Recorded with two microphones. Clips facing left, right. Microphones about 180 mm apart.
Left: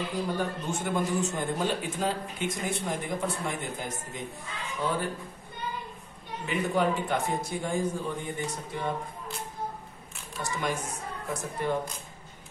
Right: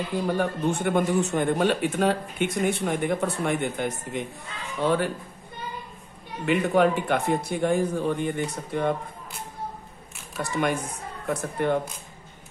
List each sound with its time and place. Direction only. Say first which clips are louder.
0.3 s a man's voice: right 6 dB; 65° right (ahead or behind)
6.4 s speech: right 6 dB; 65° right (ahead or behind)
10.3 s speech: right 6 dB; 60° right (ahead or behind)